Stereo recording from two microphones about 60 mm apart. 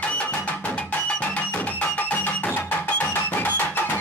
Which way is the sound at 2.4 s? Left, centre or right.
Left.